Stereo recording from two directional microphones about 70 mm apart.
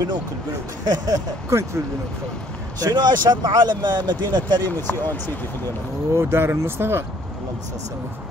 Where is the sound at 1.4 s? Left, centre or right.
Right.